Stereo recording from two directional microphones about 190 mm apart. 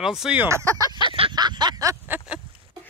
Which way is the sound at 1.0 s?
25° right (ahead or behind).